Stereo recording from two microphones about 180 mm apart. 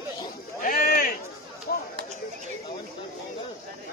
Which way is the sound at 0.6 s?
55° left (ahead or behind).